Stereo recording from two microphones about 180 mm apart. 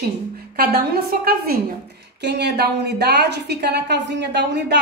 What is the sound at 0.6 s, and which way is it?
A woman's voice, 55° right (ahead or behind).